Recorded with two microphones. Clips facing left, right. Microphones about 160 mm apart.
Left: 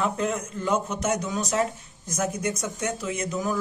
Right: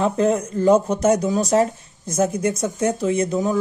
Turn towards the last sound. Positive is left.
turn(degrees=-30)  # may be behind; listen again after turning